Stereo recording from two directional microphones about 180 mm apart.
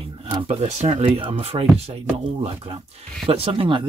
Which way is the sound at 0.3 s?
30° right (ahead or behind).